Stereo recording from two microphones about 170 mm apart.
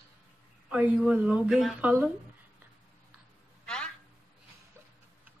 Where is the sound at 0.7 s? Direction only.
5° right (ahead or behind).